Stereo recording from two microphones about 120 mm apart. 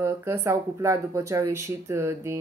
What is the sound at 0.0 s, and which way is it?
Speech, 25° right (ahead or behind).